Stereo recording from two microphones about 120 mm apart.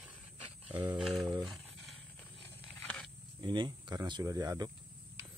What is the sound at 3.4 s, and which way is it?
Speech, 40° right (ahead or behind).